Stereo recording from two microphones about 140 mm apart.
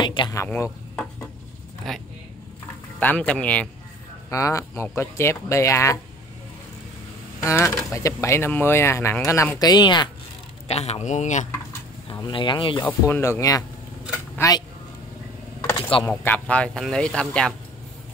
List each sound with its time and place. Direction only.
0.0 s speech: 35° left (ahead or behind)
0.4 s speech: 20° left (ahead or behind)
0.7 s a sound: centre (ahead or behind)
1.9 s speech: 5° left (ahead or behind)
4.3 s speech: 20° left (ahead or behind)
7.5 s speech: 20° left (ahead or behind)
10.7 s speech: 50° left (ahead or behind)
12.1 s speech: 35° left (ahead or behind)
12.8 s speech: 15° left (ahead or behind)
16.1 s speech: 10° left (ahead or behind)